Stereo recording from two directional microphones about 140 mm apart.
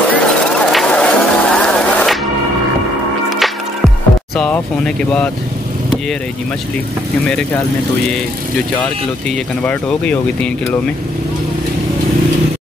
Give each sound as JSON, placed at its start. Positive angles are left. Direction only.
{"t": 0.1, "sound": "a sound", "side_deg": 5}
{"t": 3.3, "sound": "music", "side_deg": 0}
{"t": 4.4, "sound": "speech", "side_deg": 5}
{"t": 9.7, "sound": "speech", "side_deg": 10}